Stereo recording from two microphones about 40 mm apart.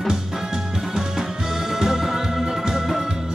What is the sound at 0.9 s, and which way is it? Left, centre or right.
Music, centre.